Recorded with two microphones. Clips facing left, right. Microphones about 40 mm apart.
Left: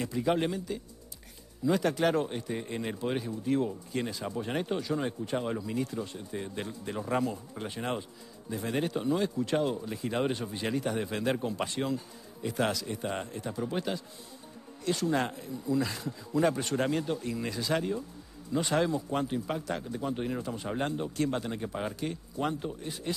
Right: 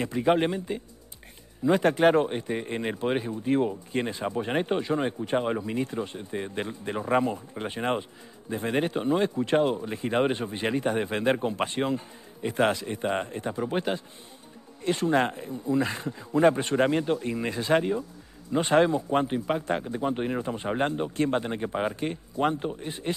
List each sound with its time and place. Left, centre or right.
0.0 s speech: right